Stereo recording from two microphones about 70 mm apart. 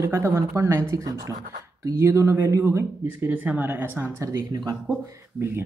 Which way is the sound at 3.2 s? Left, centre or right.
Right.